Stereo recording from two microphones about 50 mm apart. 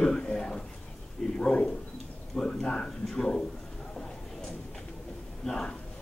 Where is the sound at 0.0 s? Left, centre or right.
Centre.